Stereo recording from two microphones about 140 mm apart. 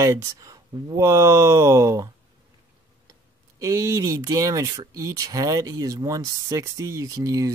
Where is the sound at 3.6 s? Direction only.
20° right (ahead or behind).